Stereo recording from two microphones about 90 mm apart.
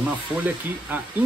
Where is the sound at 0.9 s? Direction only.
20° right (ahead or behind).